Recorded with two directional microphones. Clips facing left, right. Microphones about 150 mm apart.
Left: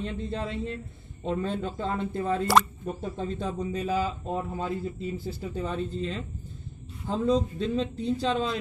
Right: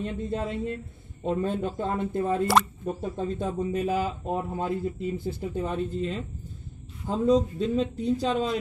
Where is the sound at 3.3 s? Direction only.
25° right (ahead or behind).